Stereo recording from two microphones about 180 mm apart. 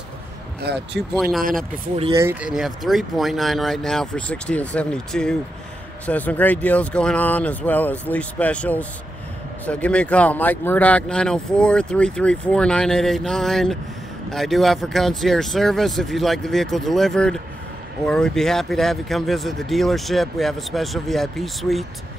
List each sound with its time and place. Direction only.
0.7 s speech: 70° right (ahead or behind)
1.1 s speech: centre (ahead or behind)
1.4 s speech: 50° right (ahead or behind)
2.1 s speech: 10° right (ahead or behind)